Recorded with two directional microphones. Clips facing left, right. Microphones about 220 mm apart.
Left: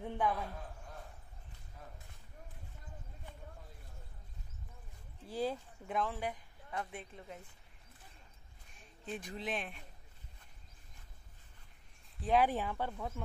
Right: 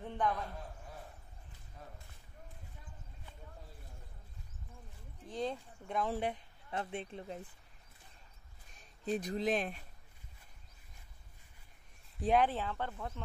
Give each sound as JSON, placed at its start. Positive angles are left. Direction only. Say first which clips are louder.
{"t": 0.0, "sound": "speech", "louder": "even", "side_deg": 10}
{"t": 5.2, "sound": "speech", "louder": "left 1 dB", "side_deg": 5}
{"t": 6.1, "sound": "speech", "louder": "right 4 dB", "side_deg": -25}
{"t": 8.7, "sound": "speech", "louder": "right 7 dB", "side_deg": -40}
{"t": 12.4, "sound": "speech", "louder": "left 1 dB", "side_deg": 15}